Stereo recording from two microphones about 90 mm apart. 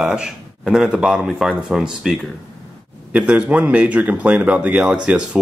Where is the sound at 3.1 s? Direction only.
15° right (ahead or behind).